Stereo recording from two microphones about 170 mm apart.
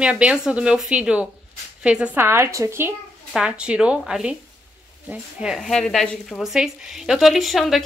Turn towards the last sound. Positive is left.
turn(degrees=0)  # may be behind; listen again after turning